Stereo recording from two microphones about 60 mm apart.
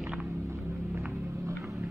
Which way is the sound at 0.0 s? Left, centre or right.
Centre.